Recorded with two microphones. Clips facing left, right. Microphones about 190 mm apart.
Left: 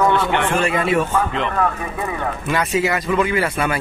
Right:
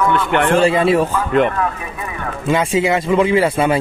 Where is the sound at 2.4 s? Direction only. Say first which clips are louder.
Right 5 dB; 25° right (ahead or behind).